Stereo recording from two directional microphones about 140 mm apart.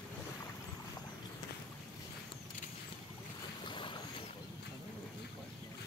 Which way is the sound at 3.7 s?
35° left (ahead or behind).